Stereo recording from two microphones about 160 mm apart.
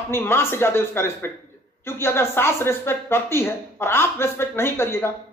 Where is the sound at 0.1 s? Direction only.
15° left (ahead or behind).